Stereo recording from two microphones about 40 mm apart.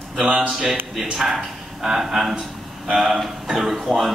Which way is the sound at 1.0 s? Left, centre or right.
Centre.